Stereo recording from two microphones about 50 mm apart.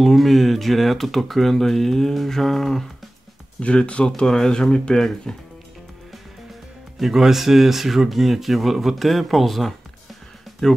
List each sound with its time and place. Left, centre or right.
0.0 s speech: centre
3.5 s speech: left
7.0 s speech: centre